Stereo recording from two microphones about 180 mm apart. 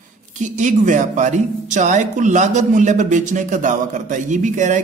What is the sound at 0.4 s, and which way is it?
Speech, 45° right (ahead or behind).